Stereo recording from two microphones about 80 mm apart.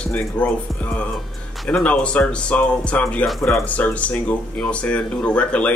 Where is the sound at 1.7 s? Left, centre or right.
Centre.